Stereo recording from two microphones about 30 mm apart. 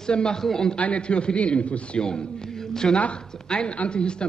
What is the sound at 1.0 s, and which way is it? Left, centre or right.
A woman's voice, left.